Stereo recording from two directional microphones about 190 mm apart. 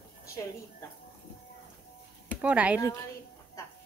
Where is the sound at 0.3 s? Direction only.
15° left (ahead or behind).